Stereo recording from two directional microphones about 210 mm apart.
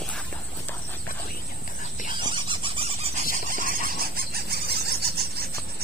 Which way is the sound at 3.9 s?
45° right (ahead or behind).